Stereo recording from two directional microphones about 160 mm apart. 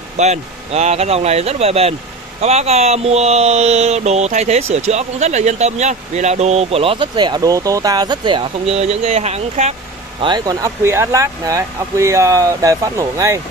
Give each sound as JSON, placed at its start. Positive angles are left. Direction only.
{"t": 0.2, "sound": "speech", "side_deg": -45}
{"t": 10.2, "sound": "speech", "side_deg": -25}